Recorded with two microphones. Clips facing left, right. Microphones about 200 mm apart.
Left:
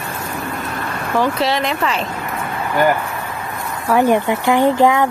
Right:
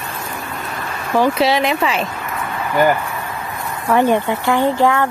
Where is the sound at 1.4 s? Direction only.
10° right (ahead or behind).